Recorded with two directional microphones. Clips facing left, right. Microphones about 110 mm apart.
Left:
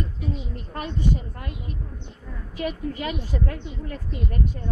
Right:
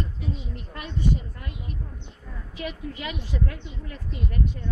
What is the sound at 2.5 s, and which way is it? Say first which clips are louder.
Speech: left 5 dB; 45° left (ahead or behind).